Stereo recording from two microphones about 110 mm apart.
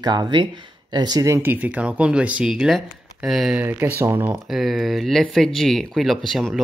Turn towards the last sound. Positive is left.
turn(degrees=0)  # may be behind; listen again after turning